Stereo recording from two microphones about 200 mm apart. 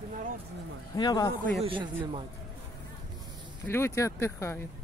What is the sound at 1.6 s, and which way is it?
Speech, 25° right (ahead or behind).